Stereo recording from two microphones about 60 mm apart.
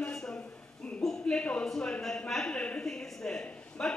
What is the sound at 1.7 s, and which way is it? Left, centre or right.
A man's voice, centre.